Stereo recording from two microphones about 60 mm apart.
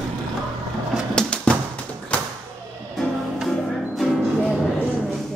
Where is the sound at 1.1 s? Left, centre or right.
Centre.